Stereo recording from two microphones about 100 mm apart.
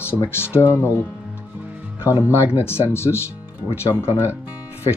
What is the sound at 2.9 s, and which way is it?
Speech, 25° left (ahead or behind).